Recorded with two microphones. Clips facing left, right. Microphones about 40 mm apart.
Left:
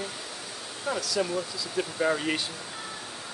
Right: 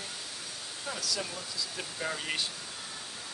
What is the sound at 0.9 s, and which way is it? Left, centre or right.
Speech, left.